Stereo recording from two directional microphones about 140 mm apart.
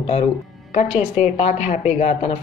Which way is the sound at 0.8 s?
55° left (ahead or behind).